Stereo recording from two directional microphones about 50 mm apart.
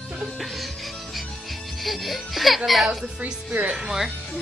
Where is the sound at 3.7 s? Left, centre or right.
Centre.